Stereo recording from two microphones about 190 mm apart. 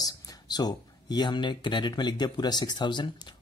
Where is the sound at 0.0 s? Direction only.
20° left (ahead or behind).